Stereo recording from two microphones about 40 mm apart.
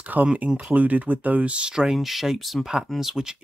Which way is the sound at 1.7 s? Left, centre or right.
Centre.